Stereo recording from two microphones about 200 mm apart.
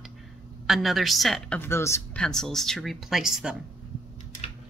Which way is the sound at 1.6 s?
15° left (ahead or behind).